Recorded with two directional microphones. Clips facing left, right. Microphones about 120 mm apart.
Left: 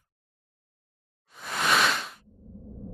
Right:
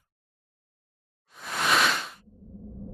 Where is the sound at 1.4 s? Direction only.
Centre (ahead or behind).